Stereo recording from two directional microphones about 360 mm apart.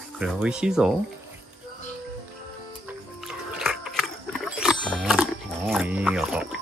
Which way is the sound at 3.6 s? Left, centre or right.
Centre.